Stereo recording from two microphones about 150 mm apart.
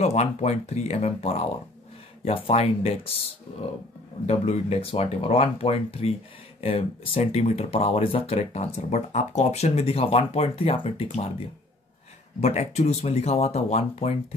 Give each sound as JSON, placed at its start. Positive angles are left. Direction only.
{"t": 0.0, "sound": "speech", "side_deg": 45}